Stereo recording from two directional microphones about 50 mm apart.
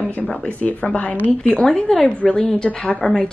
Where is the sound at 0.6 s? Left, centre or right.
Left.